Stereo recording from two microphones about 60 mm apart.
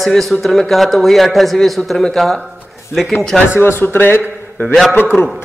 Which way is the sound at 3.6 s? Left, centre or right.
Left.